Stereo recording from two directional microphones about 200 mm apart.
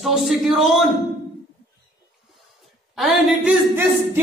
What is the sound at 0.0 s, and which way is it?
Speech, centre (ahead or behind).